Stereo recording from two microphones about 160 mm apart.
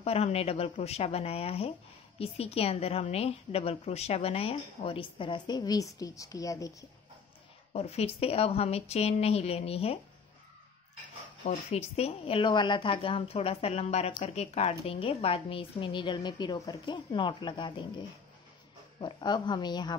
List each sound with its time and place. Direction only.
0.0 s speech: 40° left (ahead or behind); by 6.9 s 20° left (ahead or behind)
7.7 s speech: 40° left (ahead or behind)
11.4 s a woman's voice: 40° left (ahead or behind)